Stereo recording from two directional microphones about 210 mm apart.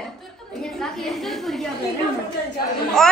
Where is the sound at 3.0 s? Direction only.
Centre (ahead or behind).